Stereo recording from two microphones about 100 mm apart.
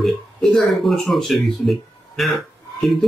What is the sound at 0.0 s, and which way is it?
Speech, centre (ahead or behind).